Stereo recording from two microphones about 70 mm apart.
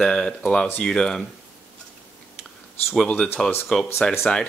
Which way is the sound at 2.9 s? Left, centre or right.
Centre.